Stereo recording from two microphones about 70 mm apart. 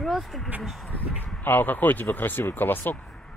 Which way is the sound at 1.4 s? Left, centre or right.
Left.